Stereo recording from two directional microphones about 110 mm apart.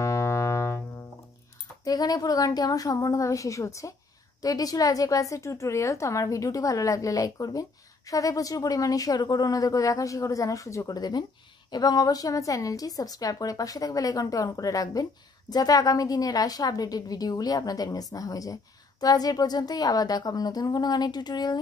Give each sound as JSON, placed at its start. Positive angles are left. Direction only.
{"t": 0.0, "sound": "piano", "side_deg": 25}
{"t": 1.9, "sound": "a woman's voice", "side_deg": 35}